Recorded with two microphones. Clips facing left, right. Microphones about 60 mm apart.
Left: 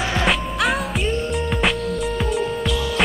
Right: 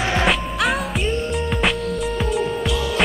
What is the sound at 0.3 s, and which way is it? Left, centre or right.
Music, centre.